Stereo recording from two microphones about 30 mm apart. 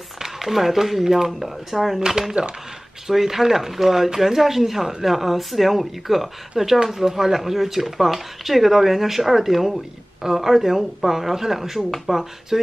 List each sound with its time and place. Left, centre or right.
0.2 s speech: centre
2.0 s speech: centre